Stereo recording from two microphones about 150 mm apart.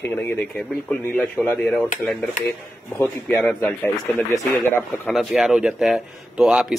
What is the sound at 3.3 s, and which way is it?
Speech, 5° left (ahead or behind).